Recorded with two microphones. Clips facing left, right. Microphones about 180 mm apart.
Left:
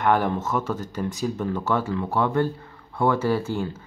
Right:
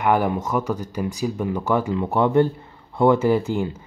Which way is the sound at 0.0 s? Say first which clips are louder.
Right 2 dB; 10° right (ahead or behind).